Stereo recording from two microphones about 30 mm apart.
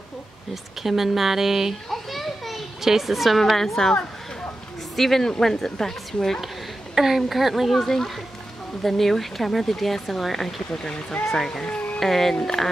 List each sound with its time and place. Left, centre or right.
0.8 s speech: centre
1.9 s children playing: centre
2.8 s speech: centre
4.9 s a woman's voice: centre
7.2 s speech: centre
7.7 s a woman's voice: centre
10.8 s speech: left
11.3 s a woman's voice: centre